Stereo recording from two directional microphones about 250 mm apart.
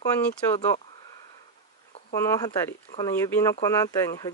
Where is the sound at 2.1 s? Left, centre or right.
Centre.